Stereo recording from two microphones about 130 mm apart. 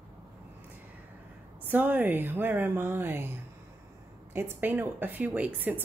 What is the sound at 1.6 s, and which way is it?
Speech, 15° right (ahead or behind).